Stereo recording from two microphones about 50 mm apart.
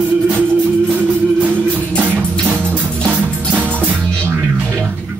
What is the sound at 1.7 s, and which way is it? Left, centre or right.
Music, right.